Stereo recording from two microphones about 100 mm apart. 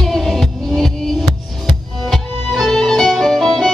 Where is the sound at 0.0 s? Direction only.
Centre (ahead or behind).